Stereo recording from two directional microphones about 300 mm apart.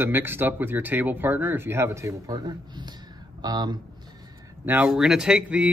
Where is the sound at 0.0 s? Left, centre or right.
Centre.